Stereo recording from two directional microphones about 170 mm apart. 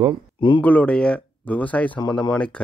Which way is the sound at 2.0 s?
25° left (ahead or behind).